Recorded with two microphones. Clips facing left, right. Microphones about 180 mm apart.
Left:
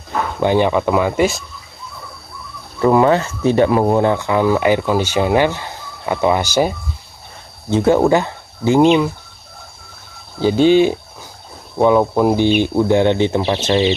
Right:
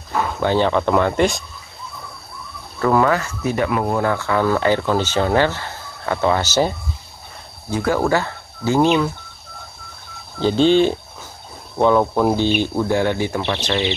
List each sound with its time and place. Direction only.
0.4 s speech: 15° left (ahead or behind)
2.8 s speech: 20° left (ahead or behind)
7.7 s speech: 25° left (ahead or behind)
10.4 s speech: 10° left (ahead or behind)